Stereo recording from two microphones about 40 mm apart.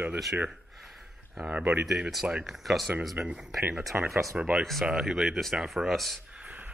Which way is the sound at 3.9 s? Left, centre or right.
Right.